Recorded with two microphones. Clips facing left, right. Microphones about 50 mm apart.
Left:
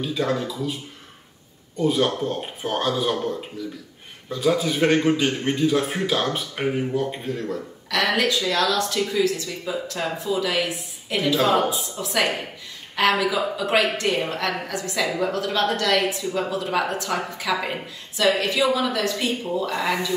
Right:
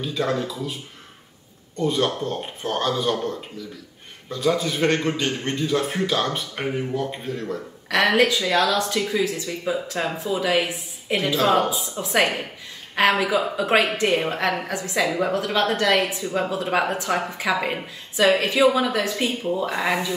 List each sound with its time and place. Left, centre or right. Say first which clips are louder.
0.0 s a man's voice: even; centre
1.8 s a man's voice: left 1 dB; centre
7.9 s a woman's voice: right 4 dB; right
8.3 s a woman's voice: right 1 dB; centre
11.3 s a man's voice: right 1 dB; centre
12.0 s a woman's voice: right 3 dB; right